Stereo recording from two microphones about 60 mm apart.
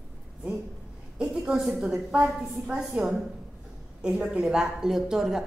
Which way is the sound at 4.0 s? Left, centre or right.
Centre.